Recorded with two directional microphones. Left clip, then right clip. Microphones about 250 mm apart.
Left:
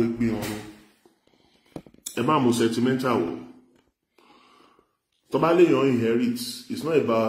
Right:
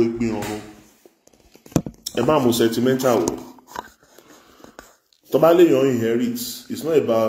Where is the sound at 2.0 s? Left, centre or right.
Centre.